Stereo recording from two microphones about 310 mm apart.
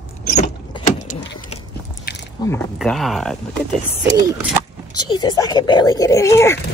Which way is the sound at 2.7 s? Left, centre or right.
Centre.